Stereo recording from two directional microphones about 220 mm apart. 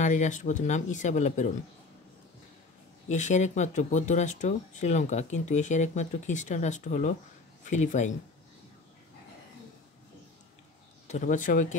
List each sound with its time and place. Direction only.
0.0 s speech: 35° left (ahead or behind)
3.1 s speech: 30° left (ahead or behind)
11.1 s speech: 35° left (ahead or behind)